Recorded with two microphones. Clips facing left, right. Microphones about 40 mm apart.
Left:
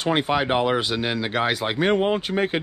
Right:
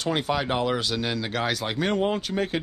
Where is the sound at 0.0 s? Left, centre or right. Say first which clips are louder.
Left 4 dB; left.